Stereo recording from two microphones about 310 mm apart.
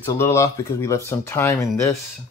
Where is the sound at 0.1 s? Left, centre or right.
Centre.